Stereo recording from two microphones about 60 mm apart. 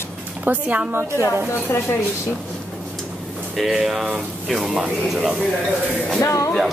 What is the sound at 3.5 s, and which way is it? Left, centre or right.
A man's voice, centre.